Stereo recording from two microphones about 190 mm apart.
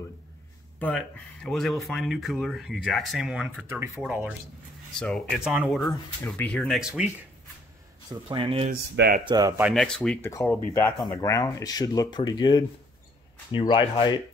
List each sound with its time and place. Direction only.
0.7 s speech: 5° left (ahead or behind)
4.9 s speech: 5° left (ahead or behind)
8.1 s speech: 25° right (ahead or behind)
8.9 s speech: 55° right (ahead or behind)
9.2 s speech: 20° right (ahead or behind)
9.6 s speech: centre (ahead or behind); by 14.2 s 25° left (ahead or behind)